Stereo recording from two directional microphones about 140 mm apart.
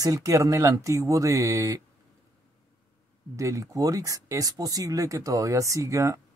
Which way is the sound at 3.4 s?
25° right (ahead or behind).